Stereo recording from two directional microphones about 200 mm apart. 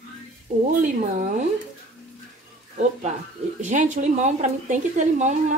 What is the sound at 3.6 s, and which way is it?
A woman's voice, 35° right (ahead or behind).